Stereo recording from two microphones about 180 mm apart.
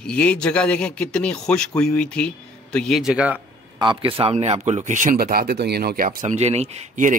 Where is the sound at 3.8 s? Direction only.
30° right (ahead or behind).